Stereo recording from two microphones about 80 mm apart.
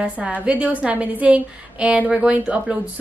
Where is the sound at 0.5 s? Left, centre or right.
Centre.